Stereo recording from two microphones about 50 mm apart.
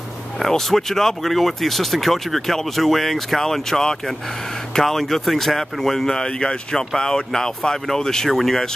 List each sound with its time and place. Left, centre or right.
0.4 s speech: centre